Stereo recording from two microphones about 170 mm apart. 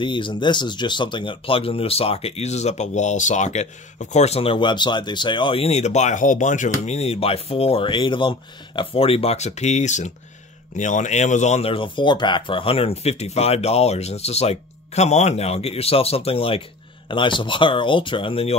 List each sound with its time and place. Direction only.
0.0 s speech: 30° left (ahead or behind)